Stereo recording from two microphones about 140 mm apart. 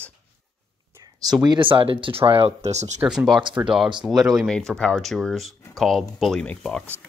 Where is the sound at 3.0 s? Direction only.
Centre (ahead or behind).